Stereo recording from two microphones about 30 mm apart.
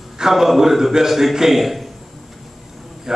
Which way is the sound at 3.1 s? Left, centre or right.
Centre.